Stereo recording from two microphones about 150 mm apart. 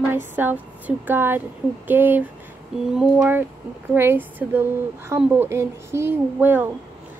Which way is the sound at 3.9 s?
15° right (ahead or behind).